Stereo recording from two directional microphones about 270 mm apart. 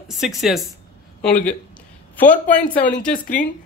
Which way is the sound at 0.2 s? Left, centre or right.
Centre.